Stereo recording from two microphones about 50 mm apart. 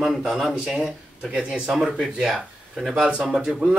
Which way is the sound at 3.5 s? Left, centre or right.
Right.